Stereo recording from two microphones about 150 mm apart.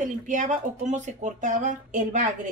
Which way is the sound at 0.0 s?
60° right (ahead or behind).